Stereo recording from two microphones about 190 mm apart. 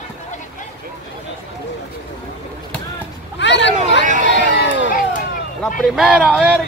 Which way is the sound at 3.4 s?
70° left (ahead or behind).